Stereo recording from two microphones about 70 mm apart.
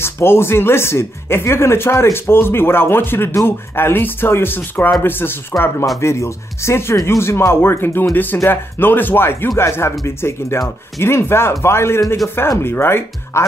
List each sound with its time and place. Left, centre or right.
0.0 s speech: left
5.9 s speech: left